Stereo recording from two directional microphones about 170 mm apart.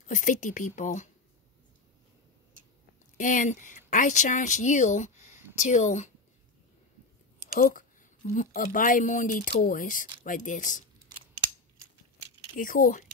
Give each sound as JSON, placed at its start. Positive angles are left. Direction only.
{"t": 0.0, "sound": "a woman's voice", "side_deg": 50}
{"t": 3.2, "sound": "speech", "side_deg": 50}
{"t": 7.5, "sound": "a woman's voice", "side_deg": 55}
{"t": 12.5, "sound": "a woman's voice", "side_deg": 55}